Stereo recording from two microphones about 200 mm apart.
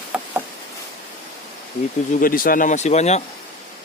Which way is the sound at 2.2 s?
45° left (ahead or behind).